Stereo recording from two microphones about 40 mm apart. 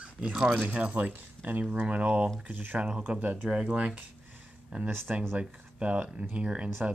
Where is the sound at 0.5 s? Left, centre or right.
Right.